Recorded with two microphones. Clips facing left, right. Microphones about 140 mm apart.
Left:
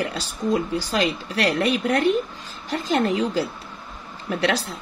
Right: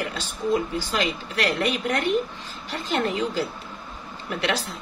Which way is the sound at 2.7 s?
40° left (ahead or behind).